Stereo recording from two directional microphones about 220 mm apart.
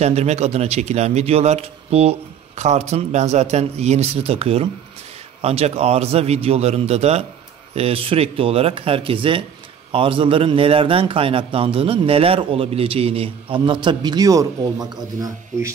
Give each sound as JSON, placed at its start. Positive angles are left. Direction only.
{"t": 0.0, "sound": "a man's voice", "side_deg": -30}